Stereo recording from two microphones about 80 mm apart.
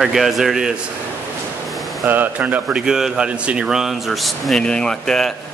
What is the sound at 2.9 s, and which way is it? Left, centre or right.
Speech, centre.